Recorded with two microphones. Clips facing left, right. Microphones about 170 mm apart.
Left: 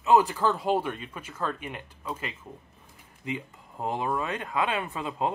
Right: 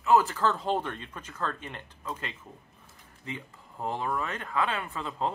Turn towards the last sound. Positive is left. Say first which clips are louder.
# left 3 dB
turn(degrees=15)  # may be behind; listen again after turning